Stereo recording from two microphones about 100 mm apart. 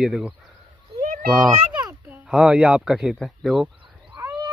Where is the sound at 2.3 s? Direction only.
10° right (ahead or behind).